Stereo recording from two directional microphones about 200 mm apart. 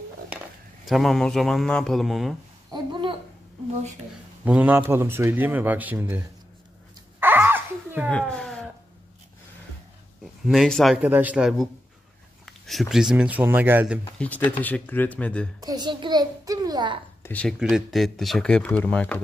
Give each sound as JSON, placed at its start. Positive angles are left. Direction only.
{"t": 0.8, "sound": "speech", "side_deg": 0}
{"t": 2.7, "sound": "babbling", "side_deg": -25}
{"t": 4.5, "sound": "a man's voice", "side_deg": -10}
{"t": 7.2, "sound": "a sound", "side_deg": -10}
{"t": 8.1, "sound": "speech", "side_deg": 5}
{"t": 10.4, "sound": "speech", "side_deg": 0}
{"t": 14.1, "sound": "speech", "side_deg": 5}
{"t": 15.6, "sound": "a child's voice", "side_deg": -20}
{"t": 17.2, "sound": "speech", "side_deg": 5}